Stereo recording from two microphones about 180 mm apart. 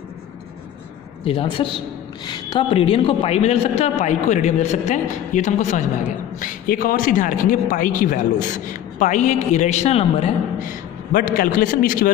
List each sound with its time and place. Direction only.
1.2 s a woman's voice: 30° left (ahead or behind)
6.4 s a man's voice: 50° left (ahead or behind); by 10.3 s 35° left (ahead or behind)
10.6 s a man's voice: 50° left (ahead or behind)